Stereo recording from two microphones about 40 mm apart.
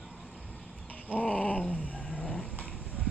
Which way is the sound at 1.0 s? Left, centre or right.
Left.